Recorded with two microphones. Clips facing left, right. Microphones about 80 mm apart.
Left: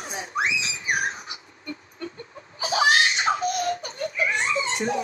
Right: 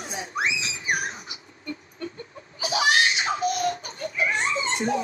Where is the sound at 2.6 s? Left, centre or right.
Left.